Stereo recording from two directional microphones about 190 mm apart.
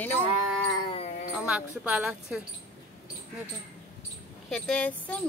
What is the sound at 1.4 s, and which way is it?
Speech, 5° right (ahead or behind).